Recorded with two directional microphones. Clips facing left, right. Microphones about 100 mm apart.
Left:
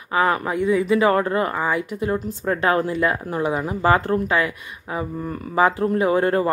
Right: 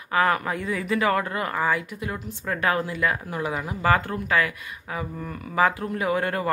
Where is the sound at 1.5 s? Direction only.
20° left (ahead or behind).